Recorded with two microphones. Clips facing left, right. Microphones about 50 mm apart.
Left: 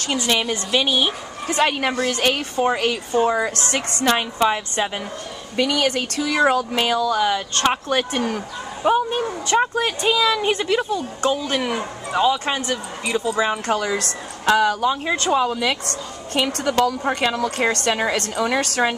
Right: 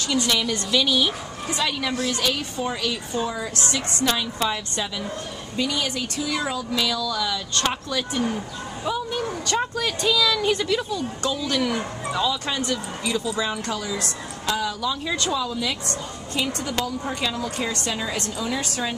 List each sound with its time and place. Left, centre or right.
0.3 s speech: left
1.5 s speech: left
5.6 s speech: left
9.3 s speech: left
13.7 s speech: left
14.9 s speech: left